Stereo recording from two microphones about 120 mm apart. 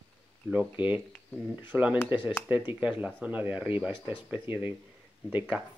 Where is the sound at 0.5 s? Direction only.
15° right (ahead or behind).